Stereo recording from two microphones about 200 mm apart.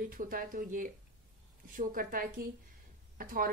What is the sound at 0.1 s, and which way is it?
A woman's voice, 45° right (ahead or behind).